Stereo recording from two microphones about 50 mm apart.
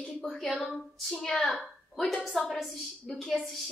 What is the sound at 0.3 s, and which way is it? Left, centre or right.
A woman's voice, centre.